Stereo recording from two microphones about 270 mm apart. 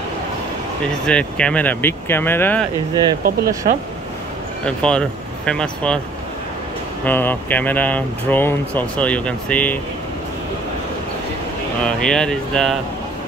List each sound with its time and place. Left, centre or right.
1.0 s speech: centre
2.9 s speech: centre
4.6 s speech: centre
7.1 s speech: centre
11.8 s speech: centre